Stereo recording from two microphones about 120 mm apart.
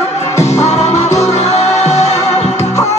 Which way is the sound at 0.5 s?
65° left (ahead or behind).